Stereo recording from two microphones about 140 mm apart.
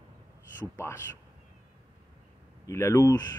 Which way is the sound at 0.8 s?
20° left (ahead or behind).